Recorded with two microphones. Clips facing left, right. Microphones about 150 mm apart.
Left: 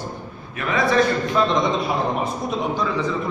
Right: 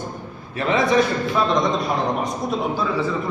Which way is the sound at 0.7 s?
20° right (ahead or behind).